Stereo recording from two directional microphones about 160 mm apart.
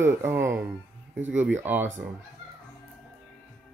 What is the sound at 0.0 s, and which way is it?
Speech, 15° right (ahead or behind).